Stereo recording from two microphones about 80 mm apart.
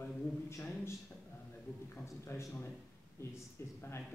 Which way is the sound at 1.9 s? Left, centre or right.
Left.